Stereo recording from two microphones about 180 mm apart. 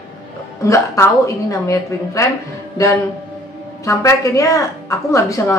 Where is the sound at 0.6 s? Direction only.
15° left (ahead or behind).